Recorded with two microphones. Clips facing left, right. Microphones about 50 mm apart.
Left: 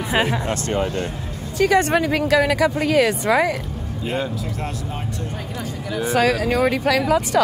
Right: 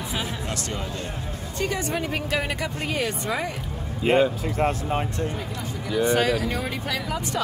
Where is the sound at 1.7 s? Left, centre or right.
Left.